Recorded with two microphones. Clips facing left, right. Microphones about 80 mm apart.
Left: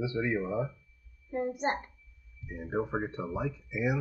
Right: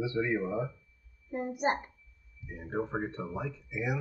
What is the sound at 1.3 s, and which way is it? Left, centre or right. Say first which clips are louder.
Speech: even; centre.